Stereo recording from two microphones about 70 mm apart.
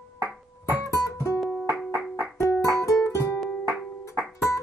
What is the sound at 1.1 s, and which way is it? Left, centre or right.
Music, left.